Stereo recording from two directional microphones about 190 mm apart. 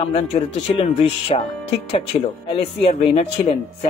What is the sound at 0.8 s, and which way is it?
Speech, 30° left (ahead or behind).